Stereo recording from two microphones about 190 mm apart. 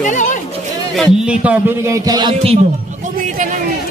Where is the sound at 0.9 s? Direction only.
Centre (ahead or behind); by 2.6 s 25° right (ahead or behind).